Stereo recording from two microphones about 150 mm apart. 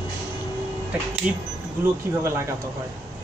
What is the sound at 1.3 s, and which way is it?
Speech, 5° right (ahead or behind).